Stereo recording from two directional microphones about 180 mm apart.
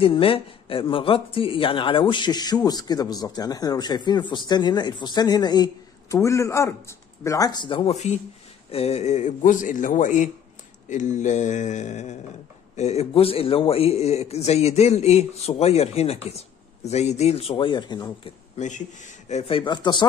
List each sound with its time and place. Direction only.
0.0 s a man's voice: 30° left (ahead or behind)
18.6 s a man's voice: 40° left (ahead or behind); by 20.1 s 25° left (ahead or behind)